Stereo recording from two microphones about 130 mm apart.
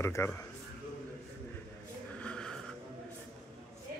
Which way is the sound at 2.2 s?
5° left (ahead or behind).